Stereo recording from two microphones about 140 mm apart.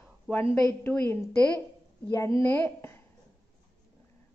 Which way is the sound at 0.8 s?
15° left (ahead or behind).